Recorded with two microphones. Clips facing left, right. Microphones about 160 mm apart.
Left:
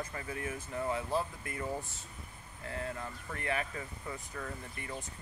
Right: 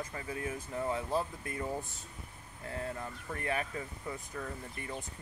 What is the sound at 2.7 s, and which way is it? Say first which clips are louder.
Speech: even; 20° right (ahead or behind).